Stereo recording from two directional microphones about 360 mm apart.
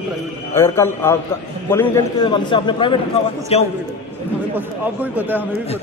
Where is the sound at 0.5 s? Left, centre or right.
Centre.